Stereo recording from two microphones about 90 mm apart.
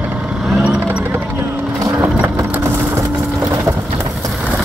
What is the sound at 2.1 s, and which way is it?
Sewing machine, 25° right (ahead or behind).